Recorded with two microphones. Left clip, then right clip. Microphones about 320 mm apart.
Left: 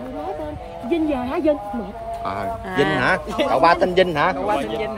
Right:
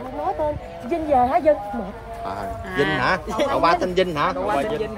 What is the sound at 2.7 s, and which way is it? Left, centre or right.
Speech, centre.